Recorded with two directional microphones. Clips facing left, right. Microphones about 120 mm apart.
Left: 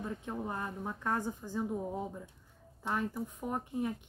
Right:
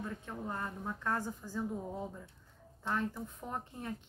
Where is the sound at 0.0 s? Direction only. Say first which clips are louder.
Left 3 dB; 20° left (ahead or behind).